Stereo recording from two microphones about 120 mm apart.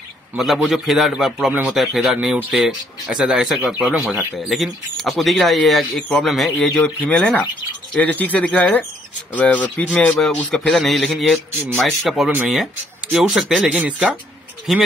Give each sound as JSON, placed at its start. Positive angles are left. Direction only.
{"t": 0.4, "sound": "speech", "side_deg": 0}
{"t": 4.5, "sound": "speech", "side_deg": 0}